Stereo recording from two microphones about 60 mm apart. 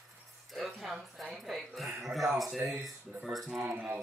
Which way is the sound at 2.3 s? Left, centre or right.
Centre.